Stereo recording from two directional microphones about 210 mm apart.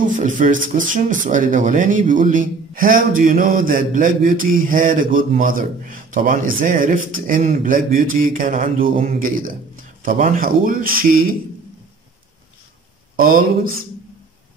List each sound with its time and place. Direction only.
0.2 s speech: 40° right (ahead or behind)
13.1 s speech: 40° right (ahead or behind)